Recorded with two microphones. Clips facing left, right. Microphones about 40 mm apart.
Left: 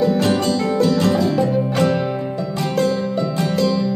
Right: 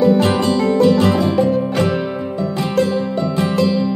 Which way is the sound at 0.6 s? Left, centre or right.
Centre.